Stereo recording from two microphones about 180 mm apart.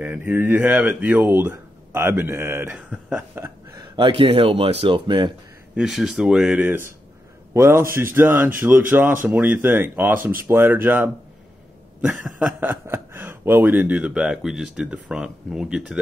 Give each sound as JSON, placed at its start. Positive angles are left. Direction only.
{"t": 0.0, "sound": "speech", "side_deg": -10}
{"t": 3.4, "sound": "speech", "side_deg": -25}
{"t": 5.8, "sound": "speech", "side_deg": -5}